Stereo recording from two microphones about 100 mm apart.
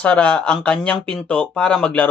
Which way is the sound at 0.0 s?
10° left (ahead or behind).